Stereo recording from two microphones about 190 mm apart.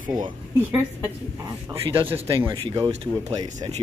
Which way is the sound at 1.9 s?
30° right (ahead or behind).